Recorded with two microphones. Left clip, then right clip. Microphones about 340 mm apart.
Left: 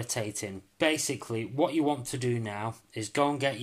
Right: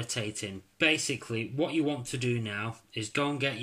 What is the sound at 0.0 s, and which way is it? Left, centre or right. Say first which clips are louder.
Speech: left 1 dB; centre.